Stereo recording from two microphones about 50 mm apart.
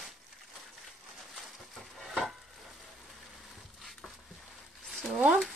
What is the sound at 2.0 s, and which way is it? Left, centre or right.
Stir, centre.